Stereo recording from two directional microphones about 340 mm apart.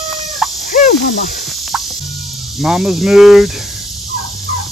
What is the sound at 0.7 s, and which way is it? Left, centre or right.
Cricket, left.